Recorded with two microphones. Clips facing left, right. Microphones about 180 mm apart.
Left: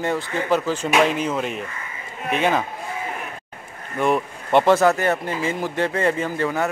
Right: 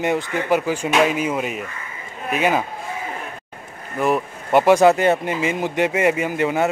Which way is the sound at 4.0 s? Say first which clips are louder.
Right 1 dB; 5° right (ahead or behind).